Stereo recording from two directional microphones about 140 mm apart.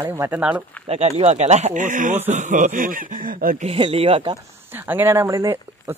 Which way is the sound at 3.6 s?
45° right (ahead or behind).